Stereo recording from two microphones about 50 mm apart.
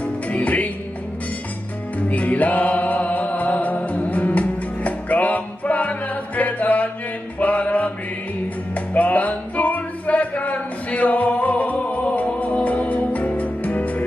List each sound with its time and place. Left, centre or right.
0.0 s music: left
2.0 s music: left
7.3 s mantra: left
8.7 s music: left